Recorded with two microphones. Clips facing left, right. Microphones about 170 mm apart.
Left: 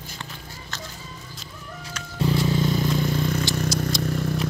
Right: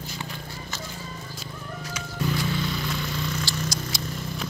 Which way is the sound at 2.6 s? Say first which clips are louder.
Left 7 dB; 45° left (ahead or behind).